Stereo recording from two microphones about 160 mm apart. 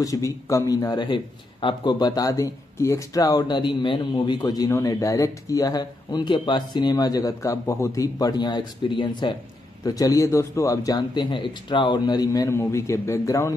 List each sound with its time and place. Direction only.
0.0 s a man's voice: 20° left (ahead or behind)